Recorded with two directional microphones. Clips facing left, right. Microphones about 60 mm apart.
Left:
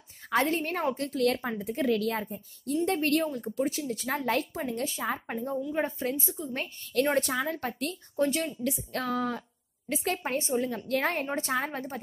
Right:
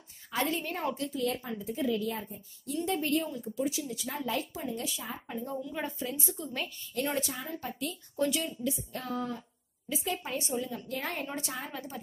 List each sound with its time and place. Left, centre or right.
0.3 s a woman's voice: left
2.7 s a woman's voice: left
5.4 s speech: left
6.4 s a woman's voice: centre
6.8 s a woman's voice: left
8.2 s speech: left
8.6 s a sound: left
9.8 s a woman's voice: left